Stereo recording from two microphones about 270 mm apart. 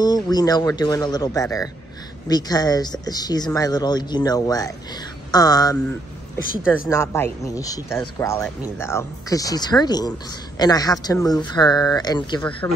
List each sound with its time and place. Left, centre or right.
0.0 s speech: centre